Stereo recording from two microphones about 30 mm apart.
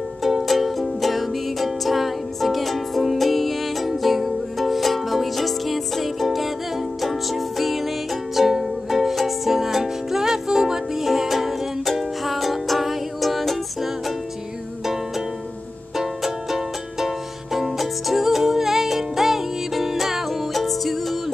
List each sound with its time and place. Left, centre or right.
0.2 s music: centre
17.6 s music: centre
20.5 s music: centre